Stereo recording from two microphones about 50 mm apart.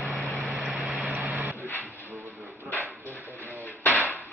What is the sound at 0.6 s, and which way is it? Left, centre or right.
Vehicle, right.